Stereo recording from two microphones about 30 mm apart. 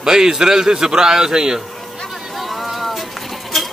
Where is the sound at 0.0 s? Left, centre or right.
Centre.